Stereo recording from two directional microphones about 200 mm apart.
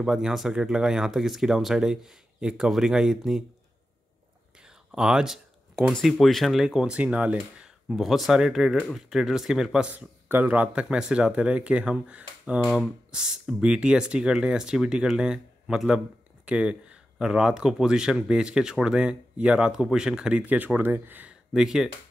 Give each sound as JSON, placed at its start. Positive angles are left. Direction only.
{"t": 0.0, "sound": "speech", "side_deg": 0}
{"t": 4.6, "sound": "speech", "side_deg": -5}